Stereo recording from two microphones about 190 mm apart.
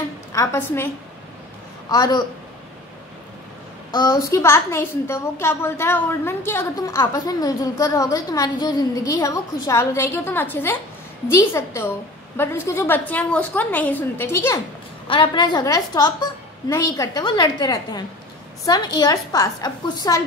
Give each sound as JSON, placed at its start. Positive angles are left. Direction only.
{"t": 0.3, "sound": "a woman's voice", "side_deg": 15}
{"t": 1.9, "sound": "a woman's voice", "side_deg": 20}
{"t": 3.9, "sound": "a woman's voice", "side_deg": 20}
{"t": 15.0, "sound": "a woman's voice", "side_deg": 25}